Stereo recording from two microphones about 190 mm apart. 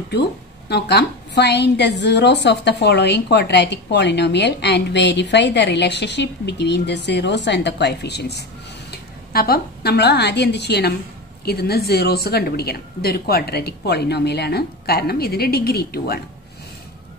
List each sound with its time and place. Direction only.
0.7 s a woman's voice: 60° left (ahead or behind)